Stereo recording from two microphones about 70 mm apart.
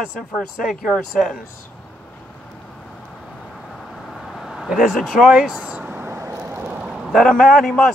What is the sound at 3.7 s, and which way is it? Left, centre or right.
Vehicle, centre.